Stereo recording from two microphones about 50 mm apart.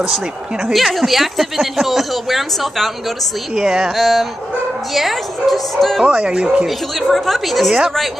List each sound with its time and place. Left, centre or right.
0.7 s speech: centre
3.5 s speech: centre
3.9 s speech: centre
6.0 s speech: right
7.0 s speech: centre